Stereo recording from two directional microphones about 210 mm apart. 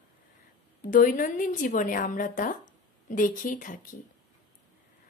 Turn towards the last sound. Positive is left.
turn(degrees=40)  # may be behind; listen again after turning